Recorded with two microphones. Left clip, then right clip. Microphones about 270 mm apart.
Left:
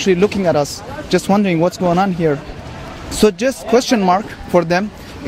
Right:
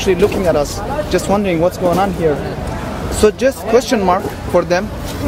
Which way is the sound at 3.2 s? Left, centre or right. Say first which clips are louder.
Right 2 dB; left.